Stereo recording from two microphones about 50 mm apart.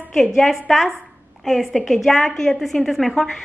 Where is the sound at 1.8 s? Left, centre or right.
Centre.